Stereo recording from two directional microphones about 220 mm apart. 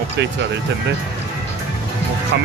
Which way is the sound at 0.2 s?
50° right (ahead or behind).